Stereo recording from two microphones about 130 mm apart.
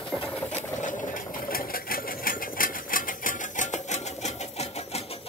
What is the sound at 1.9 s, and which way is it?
Sewing machine, 90° left.